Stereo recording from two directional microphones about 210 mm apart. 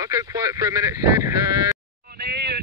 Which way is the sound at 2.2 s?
50° right (ahead or behind).